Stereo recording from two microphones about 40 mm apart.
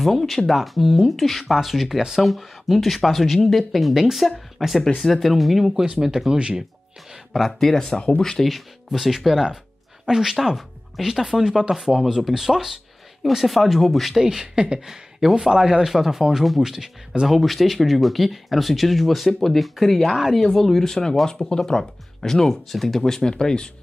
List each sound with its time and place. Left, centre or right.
0.0 s speech: centre
2.0 s speech: centre
2.2 s speech: centre
4.8 s speech: centre
5.1 s speech: centre
7.6 s speech: centre
8.5 s speech: centre
14.2 s speech: centre
14.9 s a sound: centre
15.4 s speech: centre
23.0 s speech: centre